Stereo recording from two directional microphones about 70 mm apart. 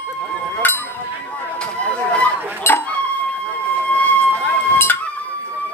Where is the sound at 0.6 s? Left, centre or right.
Left.